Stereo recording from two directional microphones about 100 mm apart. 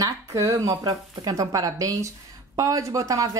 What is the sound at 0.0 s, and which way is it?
Speech, 35° right (ahead or behind).